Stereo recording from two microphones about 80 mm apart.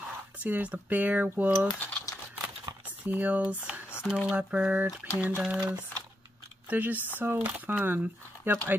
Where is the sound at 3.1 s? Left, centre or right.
Right.